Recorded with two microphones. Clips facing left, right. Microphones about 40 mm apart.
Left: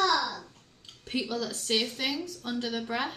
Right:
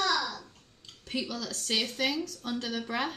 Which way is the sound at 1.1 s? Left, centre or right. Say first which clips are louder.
Left 3 dB; centre.